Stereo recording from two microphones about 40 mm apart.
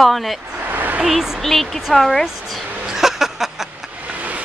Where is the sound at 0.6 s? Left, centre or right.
Right.